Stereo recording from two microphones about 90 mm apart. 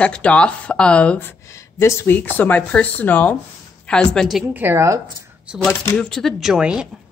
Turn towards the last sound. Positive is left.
turn(degrees=-10)  # may be behind; listen again after turning